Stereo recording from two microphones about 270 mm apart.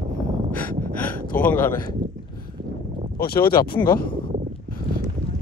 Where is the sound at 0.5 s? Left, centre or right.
Centre.